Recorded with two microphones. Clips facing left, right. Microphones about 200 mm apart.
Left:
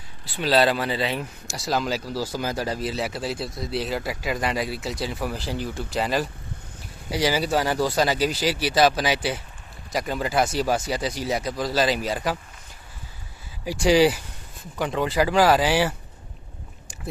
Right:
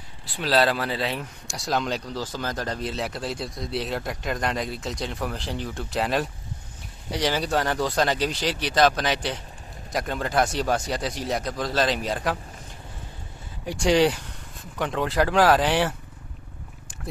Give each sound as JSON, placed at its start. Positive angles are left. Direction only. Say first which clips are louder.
{"t": 0.2, "sound": "speech", "louder": "left 2 dB", "side_deg": 0}
{"t": 13.7, "sound": "speech", "louder": "left 2 dB", "side_deg": 5}